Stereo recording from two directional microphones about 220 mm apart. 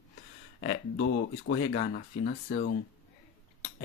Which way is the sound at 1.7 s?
40° left (ahead or behind).